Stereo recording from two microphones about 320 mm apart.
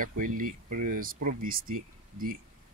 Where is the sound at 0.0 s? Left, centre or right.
Right.